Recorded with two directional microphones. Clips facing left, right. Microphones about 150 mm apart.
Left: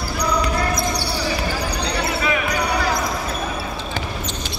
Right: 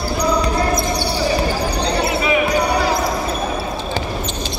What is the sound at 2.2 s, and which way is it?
Basketball bounce, 20° right (ahead or behind).